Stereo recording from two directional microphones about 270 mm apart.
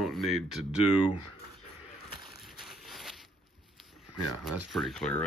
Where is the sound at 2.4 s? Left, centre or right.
Centre.